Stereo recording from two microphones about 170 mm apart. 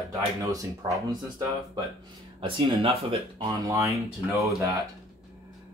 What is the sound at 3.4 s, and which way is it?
Speech, 20° right (ahead or behind).